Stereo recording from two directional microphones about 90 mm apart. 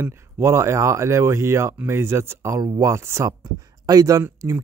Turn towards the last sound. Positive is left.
turn(degrees=-35)  # may be behind; listen again after turning